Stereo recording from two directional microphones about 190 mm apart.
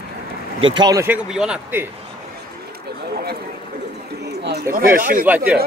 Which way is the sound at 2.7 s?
55° right (ahead or behind).